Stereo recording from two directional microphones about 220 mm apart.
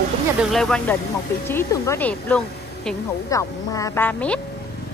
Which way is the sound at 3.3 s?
15° left (ahead or behind).